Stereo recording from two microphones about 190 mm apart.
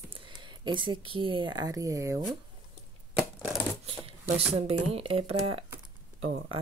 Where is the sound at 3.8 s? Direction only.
30° right (ahead or behind).